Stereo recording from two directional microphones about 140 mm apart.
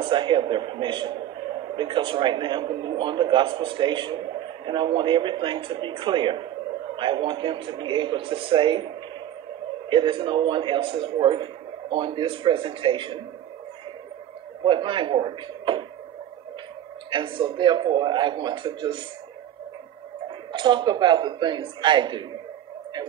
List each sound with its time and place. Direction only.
0.0 s a man's voice: 35° right (ahead or behind)
9.8 s a man's voice: 35° right (ahead or behind)
14.6 s a man's voice: 35° right (ahead or behind)
17.1 s a man's voice: 35° right (ahead or behind)
20.2 s a man's voice: 35° right (ahead or behind)